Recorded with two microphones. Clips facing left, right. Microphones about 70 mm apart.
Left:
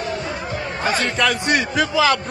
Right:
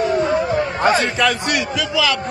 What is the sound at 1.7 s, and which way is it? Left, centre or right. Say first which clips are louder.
Speech: left 4 dB; left.